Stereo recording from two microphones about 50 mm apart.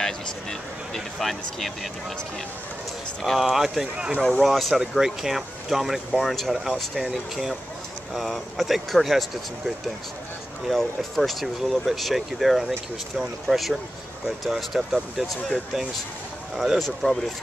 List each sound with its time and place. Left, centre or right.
0.0 s speech: centre
3.2 s speech: centre
3.9 s speech: right
4.4 s speech: centre
4.7 s speech: centre
10.7 s speech: centre
16.5 s speech: centre